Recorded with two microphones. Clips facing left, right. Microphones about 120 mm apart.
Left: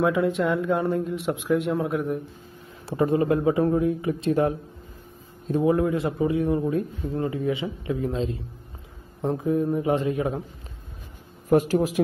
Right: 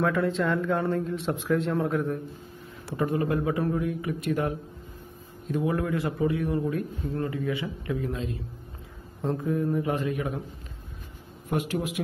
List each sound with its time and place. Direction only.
0.0 s speech: 15° left (ahead or behind)
2.9 s a man's voice: 25° left (ahead or behind)
11.4 s a man's voice: 40° left (ahead or behind)